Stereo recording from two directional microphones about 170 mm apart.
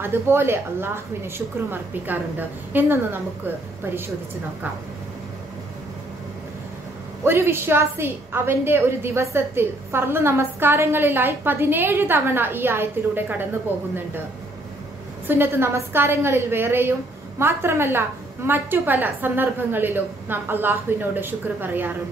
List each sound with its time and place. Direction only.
0.0 s a woman's voice: 15° right (ahead or behind)
7.2 s a woman's voice: 15° right (ahead or behind)
15.2 s a woman's voice: 15° right (ahead or behind)